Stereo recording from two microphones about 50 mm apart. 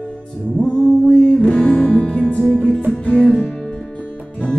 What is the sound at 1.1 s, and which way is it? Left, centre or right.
Music, centre.